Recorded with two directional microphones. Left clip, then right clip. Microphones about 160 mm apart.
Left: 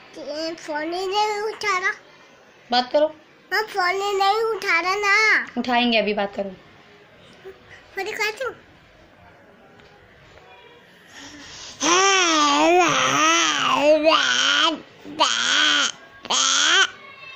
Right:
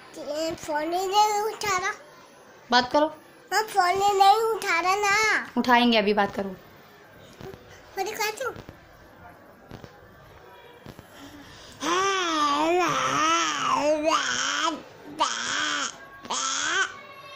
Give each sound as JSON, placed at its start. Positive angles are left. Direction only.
{"t": 0.1, "sound": "a child's voice", "side_deg": -15}
{"t": 7.9, "sound": "a child's voice", "side_deg": -10}
{"t": 11.1, "sound": "babbling", "side_deg": 25}